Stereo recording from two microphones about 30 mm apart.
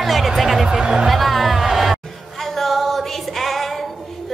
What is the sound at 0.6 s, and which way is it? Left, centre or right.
Speech, right.